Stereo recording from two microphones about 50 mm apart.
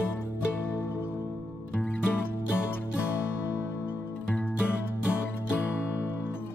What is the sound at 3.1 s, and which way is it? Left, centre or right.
Music, left.